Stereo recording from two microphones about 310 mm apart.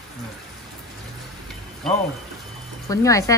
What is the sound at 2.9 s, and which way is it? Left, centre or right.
Speech, centre.